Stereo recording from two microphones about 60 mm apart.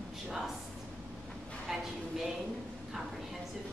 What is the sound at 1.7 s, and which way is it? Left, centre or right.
Speech, centre.